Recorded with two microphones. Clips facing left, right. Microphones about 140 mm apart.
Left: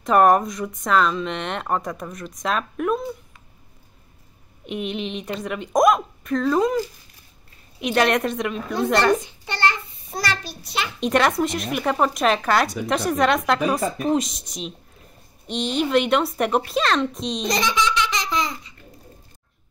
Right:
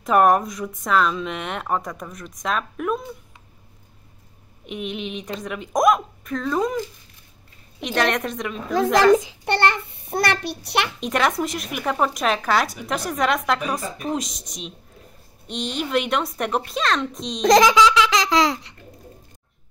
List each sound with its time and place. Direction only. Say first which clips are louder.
0.0 s speech: left 1 dB; centre (ahead or behind)
4.6 s speech: left 2 dB; centre (ahead or behind)
7.8 s speech: left 3 dB; 5° left (ahead or behind)
9.1 s a child's voice: right 5 dB; 90° right; by 10.9 s 65° right (ahead or behind)
11.0 s speech: left 6 dB; centre (ahead or behind)
17.4 s speech: right 10 dB; 90° right